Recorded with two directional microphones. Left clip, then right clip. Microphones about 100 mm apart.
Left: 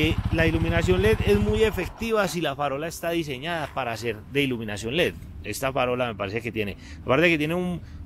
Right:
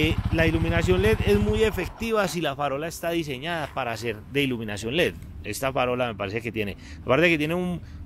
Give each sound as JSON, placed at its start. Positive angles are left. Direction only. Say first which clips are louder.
{"t": 0.3, "sound": "speech", "louder": "right 1 dB", "side_deg": -30}